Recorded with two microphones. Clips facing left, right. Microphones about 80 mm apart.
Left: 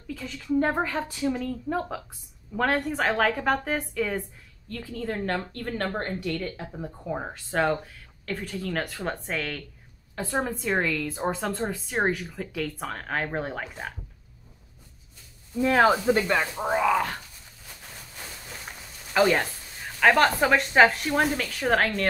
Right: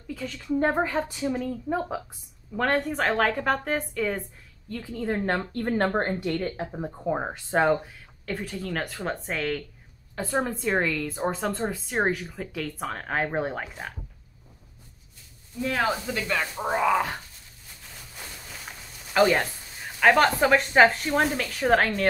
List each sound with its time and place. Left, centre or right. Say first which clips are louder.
0.1 s a sound: right 2 dB; centre
0.4 s speech: even; centre
2.5 s a woman's voice: even; centre
4.6 s speech: right 1 dB; centre
5.0 s a woman's voice: right 3 dB; right
7.5 s a woman's voice: right 3 dB; centre
15.6 s speech: left 6 dB; left
16.5 s a woman's voice: right 3 dB; centre
18.7 s a sound: even; centre
20.0 s a woman's voice: right 1 dB; centre